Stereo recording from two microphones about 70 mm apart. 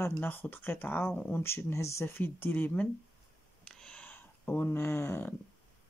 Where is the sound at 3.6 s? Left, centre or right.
Centre.